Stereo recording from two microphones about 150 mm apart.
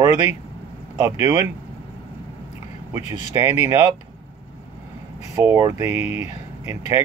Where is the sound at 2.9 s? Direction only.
20° right (ahead or behind).